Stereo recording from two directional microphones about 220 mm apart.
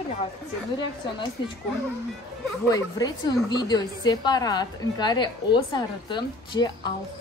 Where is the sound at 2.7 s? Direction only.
20° left (ahead or behind).